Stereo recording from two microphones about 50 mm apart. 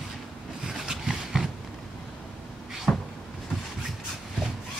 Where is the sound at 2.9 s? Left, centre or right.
Left.